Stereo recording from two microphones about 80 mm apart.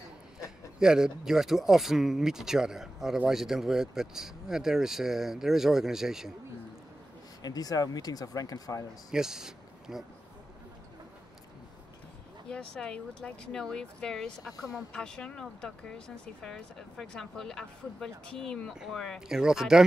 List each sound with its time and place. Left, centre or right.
0.7 s speech: centre
7.4 s speech: left
9.1 s speech: centre
12.4 s speech: centre